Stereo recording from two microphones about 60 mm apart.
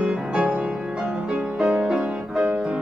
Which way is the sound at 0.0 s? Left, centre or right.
Centre.